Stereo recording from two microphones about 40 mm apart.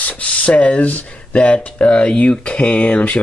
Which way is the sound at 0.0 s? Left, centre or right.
Left.